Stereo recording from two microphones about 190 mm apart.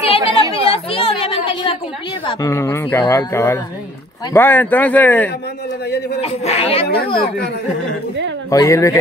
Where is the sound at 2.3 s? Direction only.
20° left (ahead or behind).